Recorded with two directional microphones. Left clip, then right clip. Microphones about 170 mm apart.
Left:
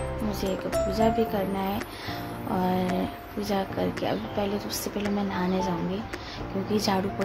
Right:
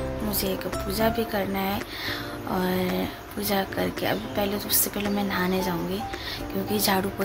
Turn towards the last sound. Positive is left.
turn(degrees=10)  # may be behind; listen again after turning